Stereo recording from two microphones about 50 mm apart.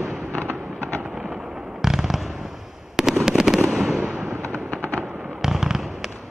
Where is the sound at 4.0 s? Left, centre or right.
Right.